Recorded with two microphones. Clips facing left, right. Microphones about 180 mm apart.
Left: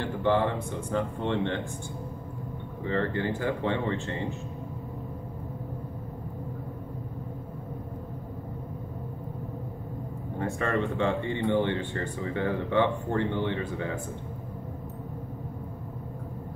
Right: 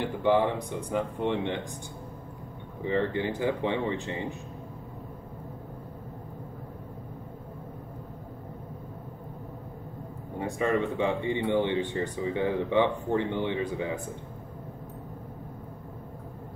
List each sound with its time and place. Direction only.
0.0 s speech: 15° right (ahead or behind)
2.8 s speech: 15° right (ahead or behind)
10.4 s speech: 15° right (ahead or behind)